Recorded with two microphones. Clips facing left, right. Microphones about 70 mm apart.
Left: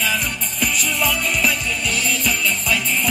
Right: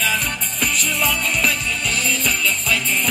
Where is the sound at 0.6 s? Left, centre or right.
Centre.